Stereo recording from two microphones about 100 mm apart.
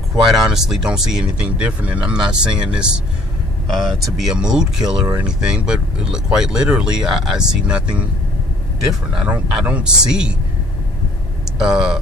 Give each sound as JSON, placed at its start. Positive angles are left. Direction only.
{"t": 0.5, "sound": "speech", "side_deg": -5}
{"t": 9.1, "sound": "speech", "side_deg": -10}
{"t": 11.5, "sound": "speech", "side_deg": -5}